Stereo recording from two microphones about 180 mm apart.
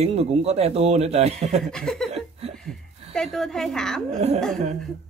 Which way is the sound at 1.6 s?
Centre (ahead or behind).